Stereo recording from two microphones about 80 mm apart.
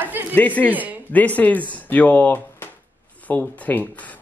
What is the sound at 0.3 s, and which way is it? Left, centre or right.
Speech, centre.